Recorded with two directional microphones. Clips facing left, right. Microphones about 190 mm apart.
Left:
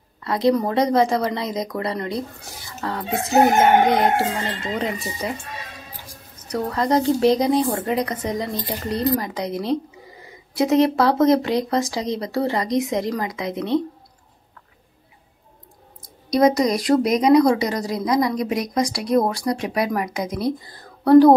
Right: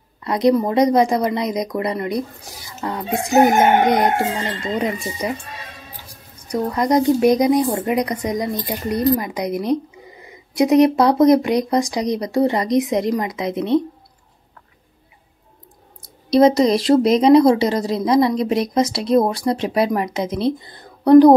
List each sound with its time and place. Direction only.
0.2 s a woman's voice: 20° right (ahead or behind)
6.4 s speech: 15° right (ahead or behind)
16.3 s a woman's voice: 25° right (ahead or behind)